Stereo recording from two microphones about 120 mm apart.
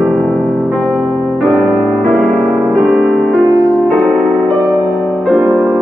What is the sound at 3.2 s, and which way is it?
Music, 5° right (ahead or behind).